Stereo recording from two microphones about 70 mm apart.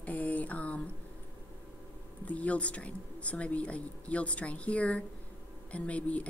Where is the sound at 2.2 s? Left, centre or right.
Centre.